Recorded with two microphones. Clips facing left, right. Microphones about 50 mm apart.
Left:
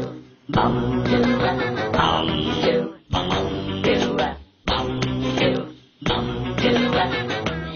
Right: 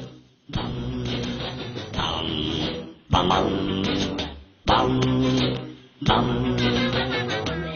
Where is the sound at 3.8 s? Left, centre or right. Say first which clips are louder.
Left 6 dB; left.